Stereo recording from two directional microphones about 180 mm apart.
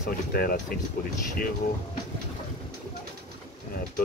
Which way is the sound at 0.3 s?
50° left (ahead or behind).